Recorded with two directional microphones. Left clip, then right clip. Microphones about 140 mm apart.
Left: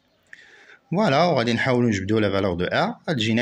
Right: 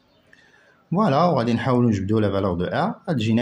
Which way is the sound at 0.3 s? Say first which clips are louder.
Left 8 dB; 20° left (ahead or behind).